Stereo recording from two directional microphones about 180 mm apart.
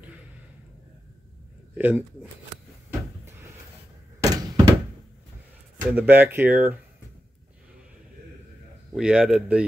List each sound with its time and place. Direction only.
1.8 s speech: 10° right (ahead or behind)
4.2 s thunk: 20° right (ahead or behind)
5.9 s speech: 10° right (ahead or behind)
8.9 s a man's voice: 5° right (ahead or behind)